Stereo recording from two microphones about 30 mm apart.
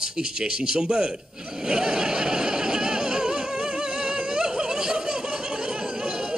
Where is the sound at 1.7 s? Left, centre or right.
Right.